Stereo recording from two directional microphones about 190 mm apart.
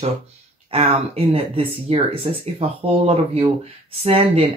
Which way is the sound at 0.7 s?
30° right (ahead or behind).